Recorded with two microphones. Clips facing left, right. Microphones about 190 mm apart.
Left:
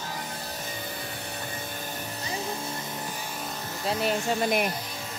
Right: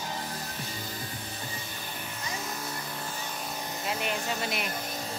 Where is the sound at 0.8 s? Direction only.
65° left (ahead or behind).